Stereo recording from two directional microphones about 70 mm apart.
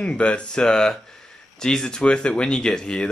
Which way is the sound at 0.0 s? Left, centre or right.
Centre.